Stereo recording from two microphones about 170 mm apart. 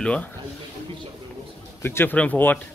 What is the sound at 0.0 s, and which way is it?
Speech, 5° left (ahead or behind).